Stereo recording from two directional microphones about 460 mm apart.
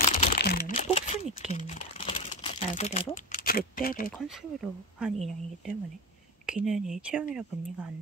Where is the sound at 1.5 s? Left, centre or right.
Centre.